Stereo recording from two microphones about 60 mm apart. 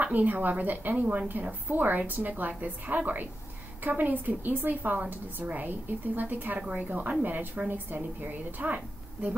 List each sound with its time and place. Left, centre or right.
0.0 s a woman's voice: right